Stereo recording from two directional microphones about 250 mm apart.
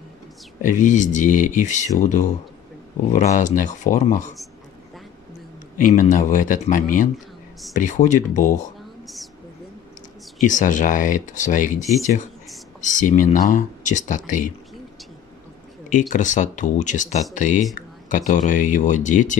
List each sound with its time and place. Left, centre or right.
0.6 s speech: left
5.8 s speech: left
9.0 s a sound: centre
10.4 s speech: left
12.8 s speech: left
15.9 s speech: left